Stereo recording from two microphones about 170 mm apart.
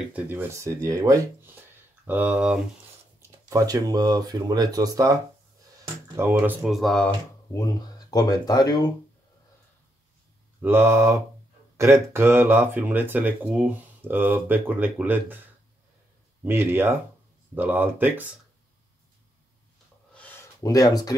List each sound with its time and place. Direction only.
0.1 s speech: 10° right (ahead or behind)
3.2 s speech: 20° right (ahead or behind)
6.6 s speech: centre (ahead or behind)
7.5 s speech: 20° left (ahead or behind)
10.6 s speech: 15° right (ahead or behind)
16.4 s speech: 15° right (ahead or behind)
20.6 s speech: 20° left (ahead or behind)